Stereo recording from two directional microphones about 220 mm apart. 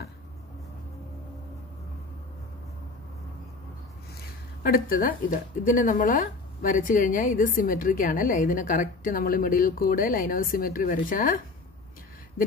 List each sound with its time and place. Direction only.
4.6 s speech: 40° left (ahead or behind)